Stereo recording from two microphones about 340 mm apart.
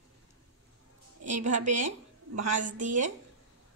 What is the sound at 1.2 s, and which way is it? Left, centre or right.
A woman's voice, right.